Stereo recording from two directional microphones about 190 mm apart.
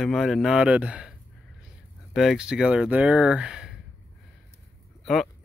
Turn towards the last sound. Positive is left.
turn(degrees=0)  # may be behind; listen again after turning